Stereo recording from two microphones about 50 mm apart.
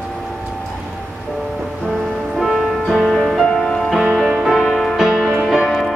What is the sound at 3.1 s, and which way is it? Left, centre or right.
Music, centre.